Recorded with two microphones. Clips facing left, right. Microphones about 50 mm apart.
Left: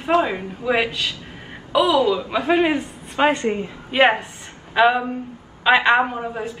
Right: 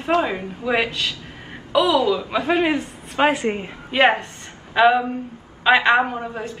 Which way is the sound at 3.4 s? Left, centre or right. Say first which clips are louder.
Left 1 dB; right.